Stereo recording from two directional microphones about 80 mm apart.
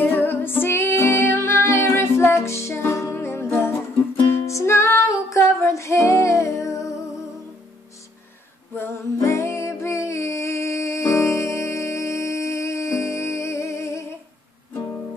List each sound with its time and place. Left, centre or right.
0.0 s music: left
8.7 s music: left